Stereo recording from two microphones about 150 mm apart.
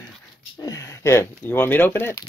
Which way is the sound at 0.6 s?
25° left (ahead or behind).